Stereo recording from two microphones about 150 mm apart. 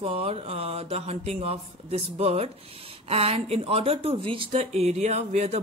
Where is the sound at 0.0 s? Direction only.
40° right (ahead or behind).